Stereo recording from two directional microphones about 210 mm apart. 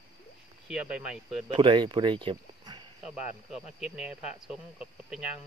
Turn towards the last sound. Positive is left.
turn(degrees=-5)  # may be behind; listen again after turning